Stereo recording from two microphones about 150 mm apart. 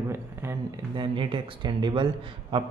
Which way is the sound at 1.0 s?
35° right (ahead or behind).